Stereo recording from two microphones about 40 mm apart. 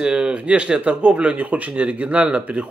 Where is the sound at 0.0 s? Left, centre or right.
Right.